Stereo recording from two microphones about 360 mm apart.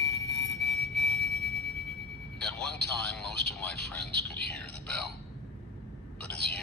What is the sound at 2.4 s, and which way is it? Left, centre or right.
Speech, centre.